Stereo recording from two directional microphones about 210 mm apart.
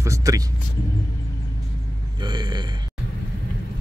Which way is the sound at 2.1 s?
20° right (ahead or behind).